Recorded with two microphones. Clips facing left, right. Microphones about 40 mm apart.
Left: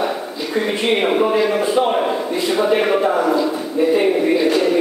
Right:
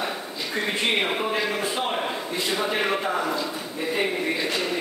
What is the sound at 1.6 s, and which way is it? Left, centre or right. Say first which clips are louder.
A man's voice: left 10 dB; centre.